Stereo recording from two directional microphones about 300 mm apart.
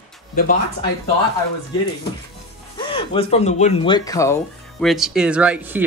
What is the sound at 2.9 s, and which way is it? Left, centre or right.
Speech, centre.